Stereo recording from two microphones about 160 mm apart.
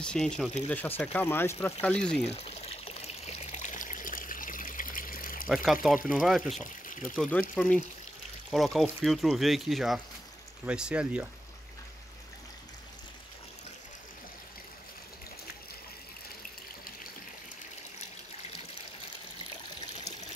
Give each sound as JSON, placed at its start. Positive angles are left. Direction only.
{"t": 0.0, "sound": "speech", "side_deg": 5}
{"t": 2.3, "sound": "water", "side_deg": 40}
{"t": 5.5, "sound": "speech", "side_deg": 0}
{"t": 7.2, "sound": "speech", "side_deg": 10}